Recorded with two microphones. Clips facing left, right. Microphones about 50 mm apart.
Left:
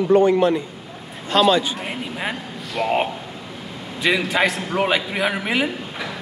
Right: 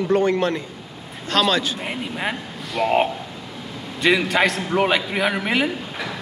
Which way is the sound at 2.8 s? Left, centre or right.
Centre.